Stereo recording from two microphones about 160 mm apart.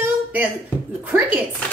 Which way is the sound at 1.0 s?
10° right (ahead or behind).